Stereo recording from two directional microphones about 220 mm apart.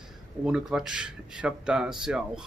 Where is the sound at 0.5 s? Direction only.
5° right (ahead or behind).